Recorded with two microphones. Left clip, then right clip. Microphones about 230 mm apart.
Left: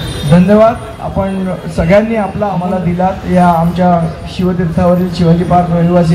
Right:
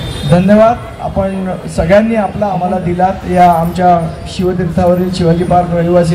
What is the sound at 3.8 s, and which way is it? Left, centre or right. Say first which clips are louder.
A man's voice: right 2 dB; right.